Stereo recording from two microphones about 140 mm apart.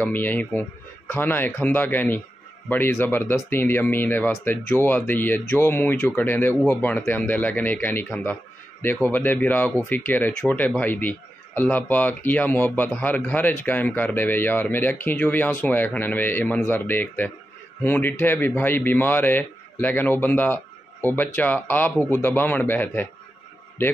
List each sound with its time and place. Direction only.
0.0 s speech: 15° left (ahead or behind)